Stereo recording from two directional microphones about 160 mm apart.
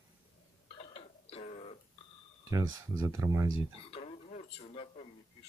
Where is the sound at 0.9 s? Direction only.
40° left (ahead or behind).